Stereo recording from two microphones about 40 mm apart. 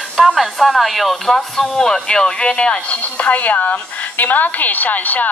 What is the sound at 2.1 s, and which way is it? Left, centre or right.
A woman's voice, left.